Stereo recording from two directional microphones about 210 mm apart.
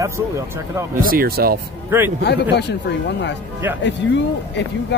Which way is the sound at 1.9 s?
10° right (ahead or behind).